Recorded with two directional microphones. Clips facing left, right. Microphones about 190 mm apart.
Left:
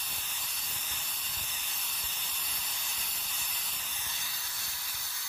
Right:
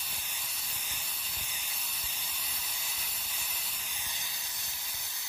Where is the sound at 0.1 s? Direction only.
10° right (ahead or behind).